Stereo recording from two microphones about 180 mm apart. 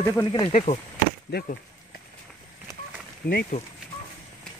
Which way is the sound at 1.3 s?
60° left (ahead or behind).